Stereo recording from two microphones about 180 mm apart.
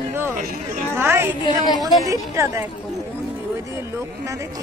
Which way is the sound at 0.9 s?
15° right (ahead or behind).